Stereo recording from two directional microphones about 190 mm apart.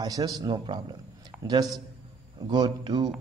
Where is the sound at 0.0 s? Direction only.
20° right (ahead or behind).